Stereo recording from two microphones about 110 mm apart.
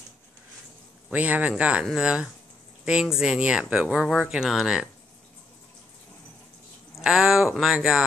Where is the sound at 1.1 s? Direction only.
10° right (ahead or behind).